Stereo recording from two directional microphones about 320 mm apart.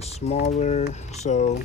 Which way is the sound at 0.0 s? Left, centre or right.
Centre.